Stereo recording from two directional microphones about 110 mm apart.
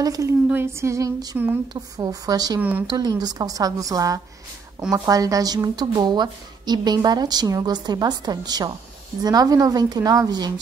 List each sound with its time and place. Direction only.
0.0 s a woman's voice: 30° right (ahead or behind)
0.5 s female singing: 20° right (ahead or behind)
1.7 s a woman's voice: 35° right (ahead or behind)